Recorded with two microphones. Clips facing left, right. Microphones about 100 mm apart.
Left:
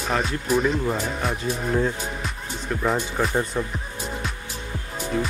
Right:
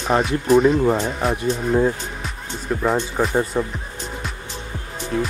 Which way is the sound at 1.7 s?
20° right (ahead or behind).